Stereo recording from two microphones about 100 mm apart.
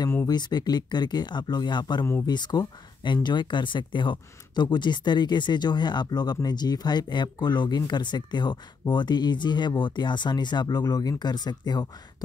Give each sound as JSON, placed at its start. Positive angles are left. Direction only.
{"t": 0.3, "sound": "speech", "side_deg": 45}